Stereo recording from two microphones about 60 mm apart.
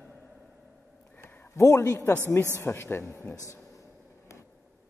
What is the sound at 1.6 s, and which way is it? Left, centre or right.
A man's voice, left.